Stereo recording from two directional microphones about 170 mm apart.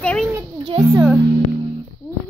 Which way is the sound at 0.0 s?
5° left (ahead or behind).